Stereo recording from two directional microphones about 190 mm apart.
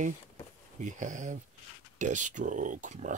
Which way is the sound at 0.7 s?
40° right (ahead or behind).